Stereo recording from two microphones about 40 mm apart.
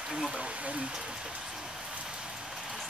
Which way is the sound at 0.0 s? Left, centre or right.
Centre.